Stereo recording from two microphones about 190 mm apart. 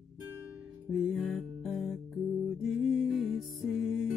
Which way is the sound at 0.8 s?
Centre (ahead or behind).